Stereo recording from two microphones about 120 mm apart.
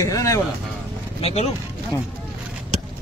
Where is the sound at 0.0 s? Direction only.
25° left (ahead or behind).